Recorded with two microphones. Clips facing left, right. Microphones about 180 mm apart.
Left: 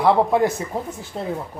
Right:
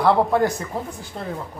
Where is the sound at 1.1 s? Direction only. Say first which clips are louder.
Left 4 dB; 25° left (ahead or behind).